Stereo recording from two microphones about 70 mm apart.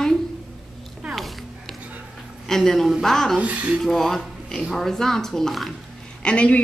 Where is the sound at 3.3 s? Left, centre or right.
Centre.